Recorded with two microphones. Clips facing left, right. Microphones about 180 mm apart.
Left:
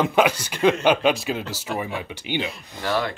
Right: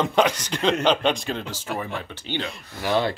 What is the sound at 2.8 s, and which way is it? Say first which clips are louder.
Speech: right 2 dB; 20° right (ahead or behind).